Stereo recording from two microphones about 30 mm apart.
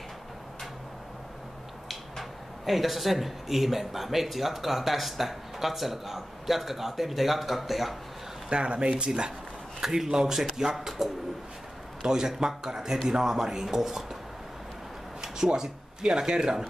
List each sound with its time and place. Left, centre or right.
2.6 s speech: centre
8.5 s speech: right
9.8 s a man's voice: centre
15.2 s speech: centre